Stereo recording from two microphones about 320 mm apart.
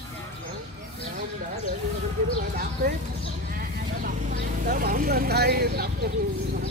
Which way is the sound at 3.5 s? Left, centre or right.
Right.